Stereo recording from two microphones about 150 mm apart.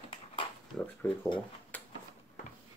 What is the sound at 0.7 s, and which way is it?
Speech, 10° left (ahead or behind).